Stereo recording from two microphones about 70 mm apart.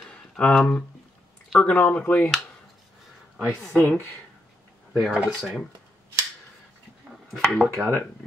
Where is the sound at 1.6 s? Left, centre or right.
Centre.